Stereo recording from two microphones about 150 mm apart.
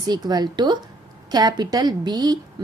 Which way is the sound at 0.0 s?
25° right (ahead or behind).